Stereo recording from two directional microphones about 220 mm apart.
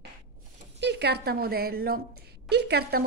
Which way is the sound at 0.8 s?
50° right (ahead or behind).